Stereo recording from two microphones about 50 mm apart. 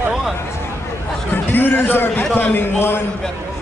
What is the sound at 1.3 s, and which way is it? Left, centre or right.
A man's voice, left.